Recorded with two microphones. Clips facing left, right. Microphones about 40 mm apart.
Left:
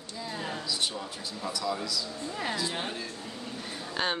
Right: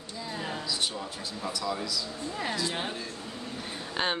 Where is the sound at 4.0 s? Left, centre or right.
Centre.